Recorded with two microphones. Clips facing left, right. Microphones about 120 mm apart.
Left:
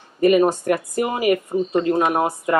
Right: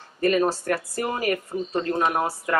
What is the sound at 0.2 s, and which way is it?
Speech, 15° left (ahead or behind).